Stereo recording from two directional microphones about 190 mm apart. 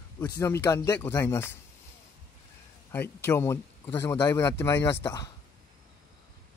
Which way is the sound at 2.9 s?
10° left (ahead or behind).